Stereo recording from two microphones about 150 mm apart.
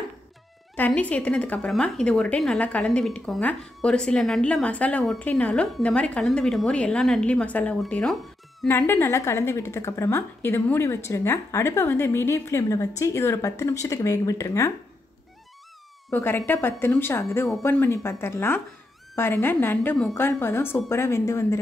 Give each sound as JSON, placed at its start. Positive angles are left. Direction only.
{"t": 0.7, "sound": "a woman's voice", "side_deg": 10}
{"t": 8.6, "sound": "a woman's voice", "side_deg": 15}
{"t": 16.1, "sound": "a woman's voice", "side_deg": 15}